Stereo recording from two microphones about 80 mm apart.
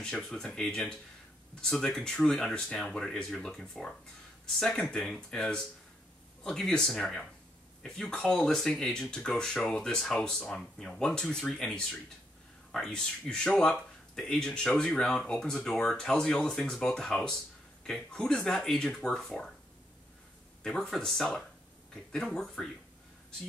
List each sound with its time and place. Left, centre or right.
0.0 s speech: centre
20.6 s speech: centre